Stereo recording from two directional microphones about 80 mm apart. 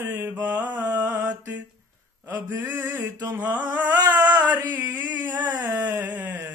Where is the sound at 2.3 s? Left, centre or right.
Right.